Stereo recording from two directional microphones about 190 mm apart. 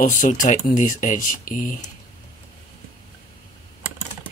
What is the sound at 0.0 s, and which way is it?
Speech, 40° left (ahead or behind).